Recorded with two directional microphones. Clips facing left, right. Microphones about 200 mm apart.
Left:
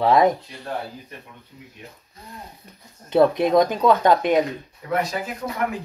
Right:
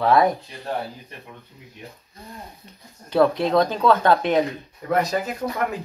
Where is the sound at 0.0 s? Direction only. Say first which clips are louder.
Left 1 dB; 20° left (ahead or behind).